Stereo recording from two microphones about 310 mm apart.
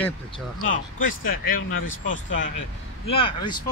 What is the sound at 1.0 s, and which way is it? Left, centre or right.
Speech, left.